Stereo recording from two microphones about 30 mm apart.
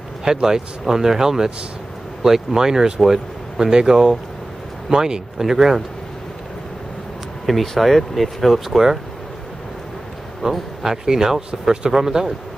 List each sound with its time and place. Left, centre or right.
0.2 s speech: centre
5.4 s speech: centre
7.4 s speech: centre
8.5 s speech: centre
10.5 s speech: centre